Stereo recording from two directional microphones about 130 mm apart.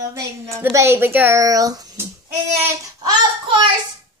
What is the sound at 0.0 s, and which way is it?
A woman's voice, 20° right (ahead or behind).